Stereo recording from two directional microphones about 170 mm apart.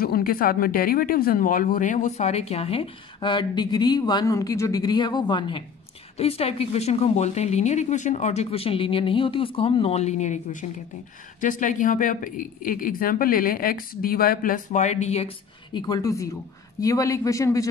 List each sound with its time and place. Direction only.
0.0 s speech: 60° left (ahead or behind); by 15.8 s 35° left (ahead or behind)
15.9 s a man's voice: 20° left (ahead or behind)